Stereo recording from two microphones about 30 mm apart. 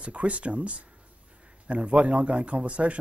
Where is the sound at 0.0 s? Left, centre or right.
Right.